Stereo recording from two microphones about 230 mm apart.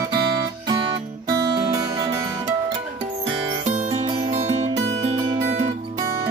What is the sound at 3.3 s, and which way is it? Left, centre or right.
Music, right.